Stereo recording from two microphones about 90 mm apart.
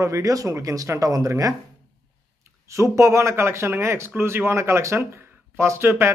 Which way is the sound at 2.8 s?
30° right (ahead or behind).